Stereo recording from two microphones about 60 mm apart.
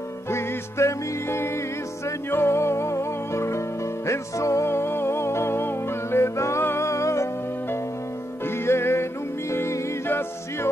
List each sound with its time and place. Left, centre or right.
0.3 s music: left
4.6 s music: left
8.5 s music: left
10.0 s music: left